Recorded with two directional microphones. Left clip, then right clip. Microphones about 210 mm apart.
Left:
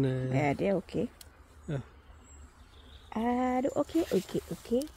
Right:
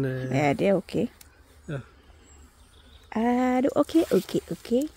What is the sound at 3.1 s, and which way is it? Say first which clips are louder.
Speech: right 6 dB; 55° right (ahead or behind).